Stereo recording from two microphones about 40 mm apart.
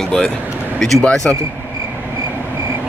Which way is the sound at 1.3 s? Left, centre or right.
Left.